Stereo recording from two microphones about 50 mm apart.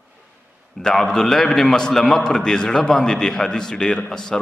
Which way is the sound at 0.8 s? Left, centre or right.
Centre.